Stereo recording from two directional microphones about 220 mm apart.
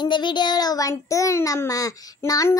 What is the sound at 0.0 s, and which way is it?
Child singing, 20° left (ahead or behind).